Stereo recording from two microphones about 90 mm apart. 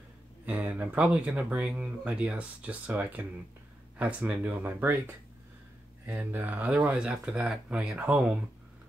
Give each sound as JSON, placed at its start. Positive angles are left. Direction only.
{"t": 0.5, "sound": "speech", "side_deg": -20}